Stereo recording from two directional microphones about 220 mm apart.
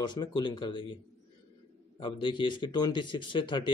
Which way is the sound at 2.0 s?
20° left (ahead or behind).